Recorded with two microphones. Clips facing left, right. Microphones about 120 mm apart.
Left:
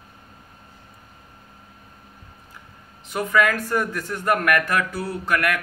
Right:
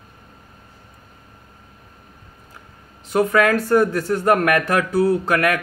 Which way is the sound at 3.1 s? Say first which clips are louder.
Right 5 dB; 35° right (ahead or behind).